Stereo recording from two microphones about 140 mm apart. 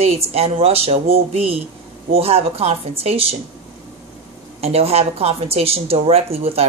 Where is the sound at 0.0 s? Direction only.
50° right (ahead or behind).